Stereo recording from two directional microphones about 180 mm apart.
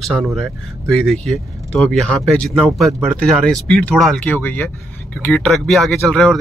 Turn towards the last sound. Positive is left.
turn(degrees=0)  # may be behind; listen again after turning